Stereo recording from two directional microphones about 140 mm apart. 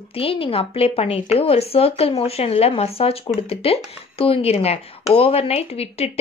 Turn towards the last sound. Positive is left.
turn(degrees=45)  # may be behind; listen again after turning